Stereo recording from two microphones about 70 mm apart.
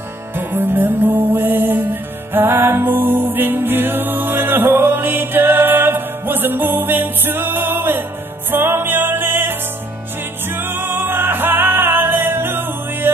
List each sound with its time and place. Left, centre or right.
0.4 s music: right
2.3 s a capella: right
8.5 s music: right